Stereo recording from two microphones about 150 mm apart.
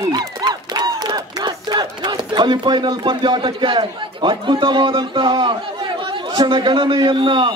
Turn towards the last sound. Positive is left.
turn(degrees=-30)  # may be behind; listen again after turning